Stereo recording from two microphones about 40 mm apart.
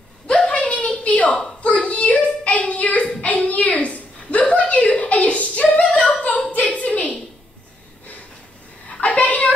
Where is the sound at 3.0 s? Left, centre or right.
Left.